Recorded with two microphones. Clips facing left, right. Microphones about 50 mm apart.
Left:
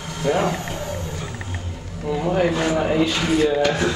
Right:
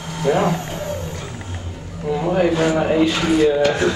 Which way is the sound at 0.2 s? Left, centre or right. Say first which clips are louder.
Right 3 dB; centre.